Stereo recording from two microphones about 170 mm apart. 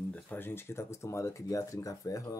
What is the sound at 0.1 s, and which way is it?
Speech, 10° left (ahead or behind).